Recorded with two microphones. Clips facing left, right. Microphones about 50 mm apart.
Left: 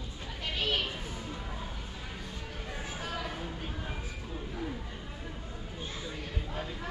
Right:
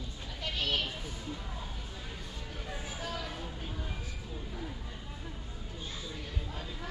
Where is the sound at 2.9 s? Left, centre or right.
Centre.